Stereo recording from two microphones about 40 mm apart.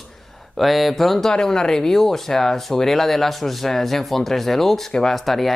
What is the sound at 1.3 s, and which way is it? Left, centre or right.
Speech, centre.